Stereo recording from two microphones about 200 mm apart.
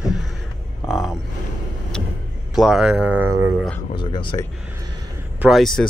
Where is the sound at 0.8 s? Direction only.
Centre (ahead or behind).